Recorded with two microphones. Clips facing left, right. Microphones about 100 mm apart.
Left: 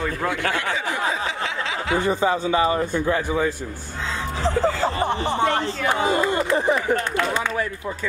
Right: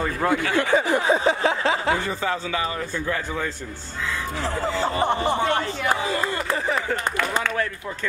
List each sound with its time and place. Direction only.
0.6 s speech: 45° right (ahead or behind)
1.1 s a sound: 40° right (ahead or behind)
2.0 s a man's voice: 20° left (ahead or behind)
6.0 s a man's voice: 25° left (ahead or behind)